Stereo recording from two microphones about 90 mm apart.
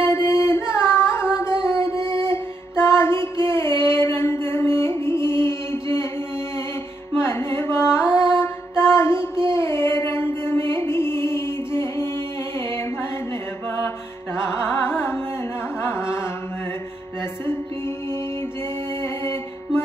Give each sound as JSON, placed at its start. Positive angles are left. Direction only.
{"t": 0.0, "sound": "music", "side_deg": 30}
{"t": 7.2, "sound": "mantra", "side_deg": 25}
{"t": 9.5, "sound": "music", "side_deg": 30}
{"t": 14.4, "sound": "carnatic music", "side_deg": 30}